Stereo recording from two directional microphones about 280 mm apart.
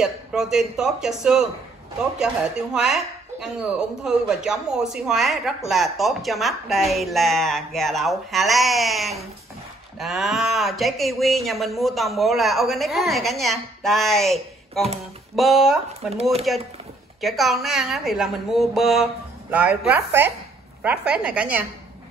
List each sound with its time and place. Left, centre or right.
0.0 s speech: centre
16.1 s speech: right
17.2 s speech: centre